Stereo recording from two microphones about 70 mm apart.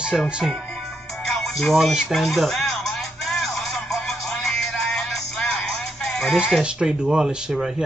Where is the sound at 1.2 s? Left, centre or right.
Centre.